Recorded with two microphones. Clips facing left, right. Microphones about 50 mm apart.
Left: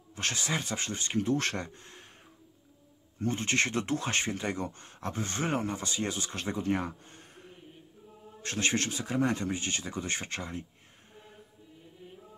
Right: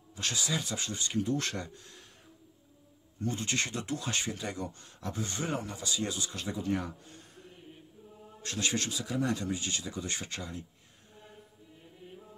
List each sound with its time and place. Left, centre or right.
0.1 s speech: left
3.2 s speech: left
8.5 s speech: left